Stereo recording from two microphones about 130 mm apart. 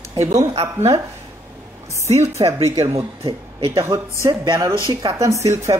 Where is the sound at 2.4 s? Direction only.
35° right (ahead or behind).